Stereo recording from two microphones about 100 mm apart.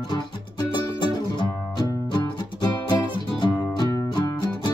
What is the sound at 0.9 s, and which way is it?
Music, 50° left (ahead or behind).